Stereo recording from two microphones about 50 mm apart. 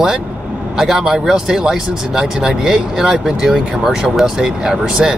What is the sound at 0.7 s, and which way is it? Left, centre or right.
Speech, centre.